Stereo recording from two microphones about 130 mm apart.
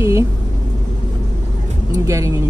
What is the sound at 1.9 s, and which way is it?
Speech, 25° right (ahead or behind).